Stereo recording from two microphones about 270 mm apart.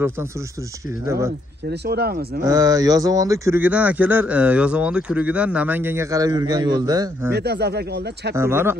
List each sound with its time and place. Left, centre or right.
1.7 s speech: right
2.4 s speech: centre
7.3 s speech: right
8.4 s speech: centre